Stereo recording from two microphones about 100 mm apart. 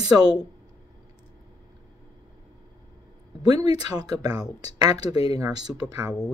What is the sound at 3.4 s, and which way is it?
Speech, 40° right (ahead or behind).